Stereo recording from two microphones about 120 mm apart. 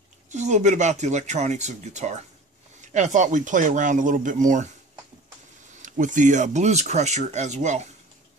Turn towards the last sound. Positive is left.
turn(degrees=-80)